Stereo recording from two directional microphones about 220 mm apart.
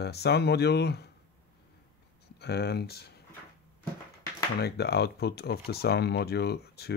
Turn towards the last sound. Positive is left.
turn(degrees=50)  # may be behind; listen again after turning